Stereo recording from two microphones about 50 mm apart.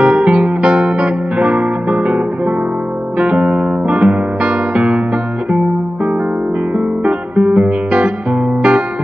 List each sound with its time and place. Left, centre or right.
0.0 s music: right
7.1 s guitar: right